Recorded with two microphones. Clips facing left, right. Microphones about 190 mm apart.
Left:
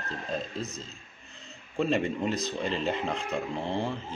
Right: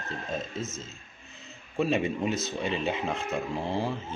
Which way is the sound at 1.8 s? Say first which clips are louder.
Even; 5° right (ahead or behind).